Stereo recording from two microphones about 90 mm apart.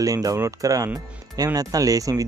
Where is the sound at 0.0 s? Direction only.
40° right (ahead or behind).